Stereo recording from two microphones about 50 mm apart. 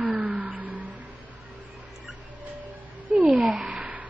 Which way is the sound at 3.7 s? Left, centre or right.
Right.